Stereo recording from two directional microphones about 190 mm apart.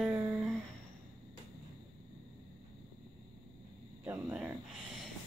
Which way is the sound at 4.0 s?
10° right (ahead or behind).